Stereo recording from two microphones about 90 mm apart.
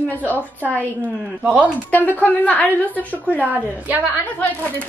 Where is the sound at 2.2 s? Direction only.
15° left (ahead or behind).